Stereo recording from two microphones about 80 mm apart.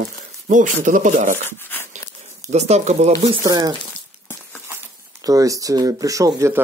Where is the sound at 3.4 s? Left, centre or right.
Right.